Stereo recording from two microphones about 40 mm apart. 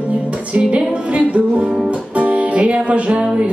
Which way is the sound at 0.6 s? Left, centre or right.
Right.